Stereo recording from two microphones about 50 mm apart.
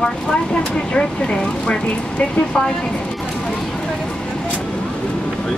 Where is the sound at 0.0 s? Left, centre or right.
Centre.